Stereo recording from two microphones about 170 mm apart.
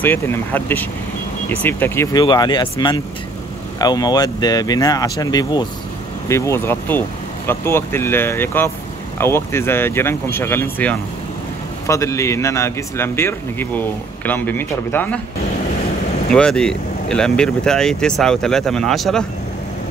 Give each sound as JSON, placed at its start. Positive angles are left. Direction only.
{"t": 0.0, "sound": "a man's voice", "side_deg": 15}
{"t": 2.1, "sound": "a man's voice", "side_deg": 25}
{"t": 16.3, "sound": "speech", "side_deg": 5}